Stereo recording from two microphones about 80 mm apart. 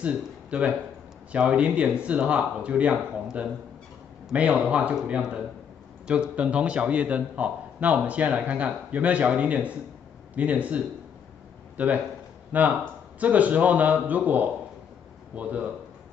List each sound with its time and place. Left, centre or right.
0.0 s a man's voice: centre
4.3 s a man's voice: centre